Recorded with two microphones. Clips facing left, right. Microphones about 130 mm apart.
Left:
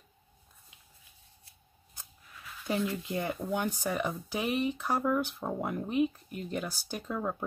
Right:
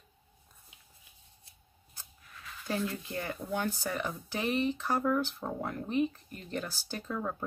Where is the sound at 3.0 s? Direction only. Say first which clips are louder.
Left 4 dB; 15° left (ahead or behind).